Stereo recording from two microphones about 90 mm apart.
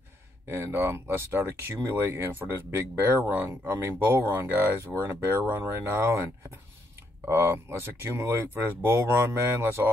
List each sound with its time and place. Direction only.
0.5 s speech: 25° right (ahead or behind)
7.2 s speech: 25° right (ahead or behind)